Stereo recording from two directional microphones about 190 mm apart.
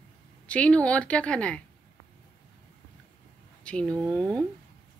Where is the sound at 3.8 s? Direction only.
20° right (ahead or behind).